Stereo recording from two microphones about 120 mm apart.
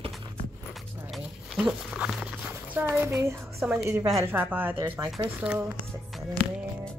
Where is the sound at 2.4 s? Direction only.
15° right (ahead or behind).